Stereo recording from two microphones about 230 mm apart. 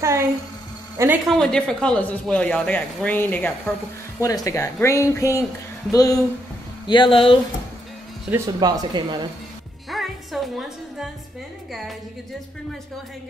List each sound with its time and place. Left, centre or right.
0.0 s a sound: centre
0.9 s a man's voice: centre; by 7.3 s left
8.5 s speech: centre
9.8 s music: centre